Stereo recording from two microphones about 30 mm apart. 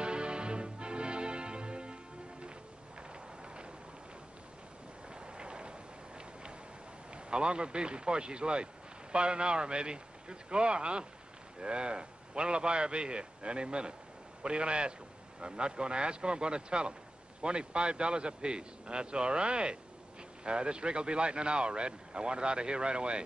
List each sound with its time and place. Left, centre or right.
0.0 s music: right
3.0 s a sound: right
5.1 s vehicle: right
7.2 s speech: right